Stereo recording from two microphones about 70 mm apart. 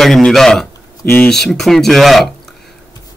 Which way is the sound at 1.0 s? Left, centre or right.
Left.